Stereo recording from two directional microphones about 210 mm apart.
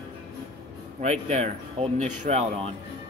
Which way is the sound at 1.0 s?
35° right (ahead or behind).